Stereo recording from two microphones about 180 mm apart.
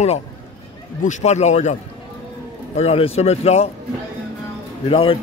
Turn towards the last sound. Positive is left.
turn(degrees=30)  # may be behind; listen again after turning